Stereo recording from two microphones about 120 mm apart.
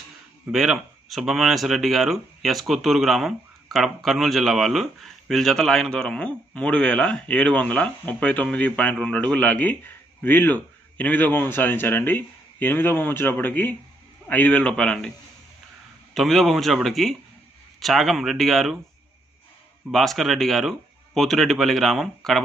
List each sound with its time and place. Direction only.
0.5 s a man's voice: centre (ahead or behind)
16.1 s speech: centre (ahead or behind)
19.9 s speech: centre (ahead or behind)